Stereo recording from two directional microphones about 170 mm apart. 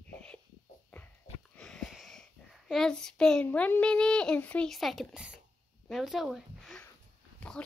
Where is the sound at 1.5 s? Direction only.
5° left (ahead or behind).